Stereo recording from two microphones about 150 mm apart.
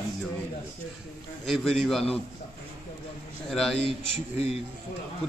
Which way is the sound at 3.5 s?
Centre (ahead or behind).